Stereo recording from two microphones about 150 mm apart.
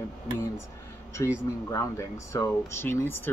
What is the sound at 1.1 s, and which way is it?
Speech, 20° left (ahead or behind).